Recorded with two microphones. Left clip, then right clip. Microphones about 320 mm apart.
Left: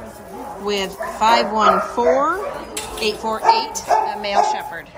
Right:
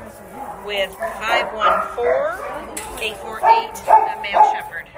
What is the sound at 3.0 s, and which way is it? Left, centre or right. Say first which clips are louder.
Speech: even; centre.